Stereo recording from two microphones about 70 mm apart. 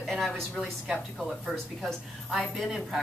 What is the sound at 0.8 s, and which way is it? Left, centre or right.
A woman's voice, centre.